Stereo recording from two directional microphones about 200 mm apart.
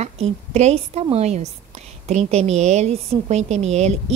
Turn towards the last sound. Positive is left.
turn(degrees=-35)  # may be behind; listen again after turning